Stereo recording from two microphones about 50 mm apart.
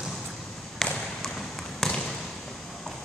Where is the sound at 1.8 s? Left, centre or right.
Centre.